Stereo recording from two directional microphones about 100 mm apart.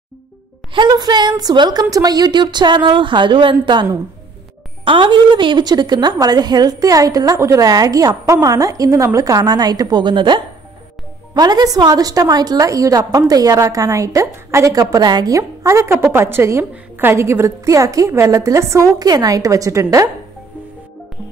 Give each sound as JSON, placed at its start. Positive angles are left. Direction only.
{"t": 0.7, "sound": "a woman's voice", "side_deg": -45}
{"t": 4.8, "sound": "a woman's voice", "side_deg": -55}
{"t": 11.3, "sound": "a woman's voice", "side_deg": -40}